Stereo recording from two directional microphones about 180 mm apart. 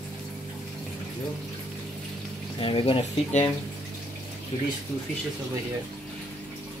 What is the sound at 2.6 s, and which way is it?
Speech, 30° left (ahead or behind).